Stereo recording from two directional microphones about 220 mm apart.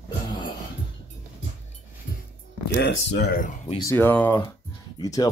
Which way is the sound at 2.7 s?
50° left (ahead or behind).